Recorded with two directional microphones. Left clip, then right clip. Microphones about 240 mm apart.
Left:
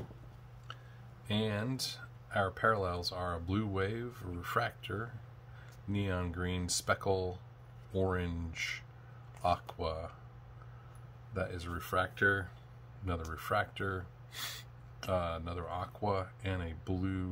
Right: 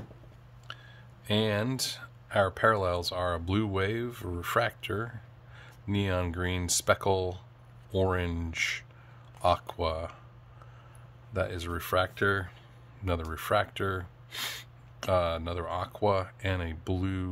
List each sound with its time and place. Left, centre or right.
1.2 s speech: right
11.3 s speech: right